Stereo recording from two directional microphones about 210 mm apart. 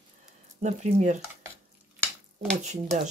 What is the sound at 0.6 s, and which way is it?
Speech, 35° right (ahead or behind).